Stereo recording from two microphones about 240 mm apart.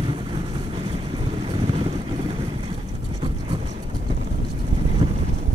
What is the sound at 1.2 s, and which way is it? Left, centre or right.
Vehicle, right.